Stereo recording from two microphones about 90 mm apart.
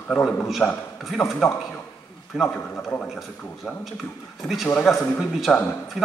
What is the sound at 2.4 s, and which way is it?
Speech, 10° left (ahead or behind).